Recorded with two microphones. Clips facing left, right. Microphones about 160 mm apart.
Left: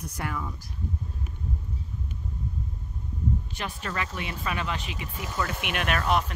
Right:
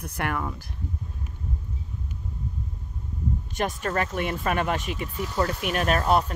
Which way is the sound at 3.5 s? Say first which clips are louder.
Right 7 dB; 45° right (ahead or behind).